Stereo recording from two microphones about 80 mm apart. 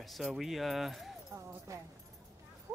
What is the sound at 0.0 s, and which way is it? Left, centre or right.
Speech, centre.